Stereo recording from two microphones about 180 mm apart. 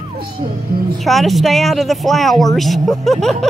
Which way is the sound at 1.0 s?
Centre (ahead or behind).